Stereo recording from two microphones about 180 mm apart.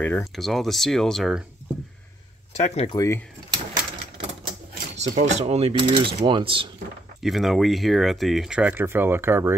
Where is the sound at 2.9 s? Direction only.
15° left (ahead or behind).